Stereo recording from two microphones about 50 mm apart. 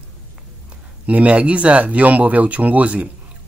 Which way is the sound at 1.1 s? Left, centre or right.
Right.